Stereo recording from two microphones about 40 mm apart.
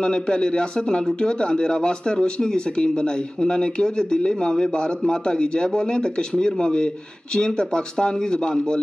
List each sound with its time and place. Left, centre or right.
0.0 s a man's voice: left